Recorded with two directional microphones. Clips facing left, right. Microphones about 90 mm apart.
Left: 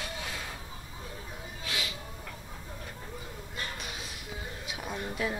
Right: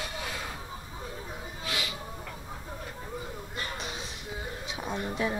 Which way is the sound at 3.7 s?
5° left (ahead or behind).